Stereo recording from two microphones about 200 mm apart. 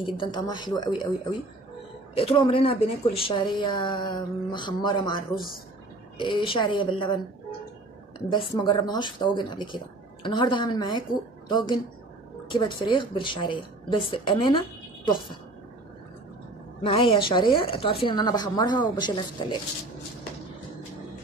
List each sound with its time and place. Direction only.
0.0 s a woman's voice: 25° left (ahead or behind)
2.1 s a woman's voice: 30° left (ahead or behind)
8.3 s a woman's voice: 25° left (ahead or behind)
16.8 s a woman's voice: 25° left (ahead or behind)